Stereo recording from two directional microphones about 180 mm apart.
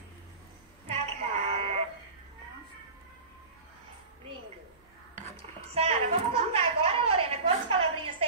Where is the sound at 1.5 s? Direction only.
35° right (ahead or behind).